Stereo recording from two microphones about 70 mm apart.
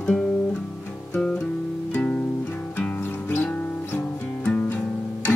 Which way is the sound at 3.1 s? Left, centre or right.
Centre.